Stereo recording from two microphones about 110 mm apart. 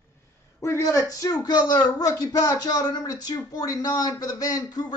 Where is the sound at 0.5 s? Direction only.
25° left (ahead or behind).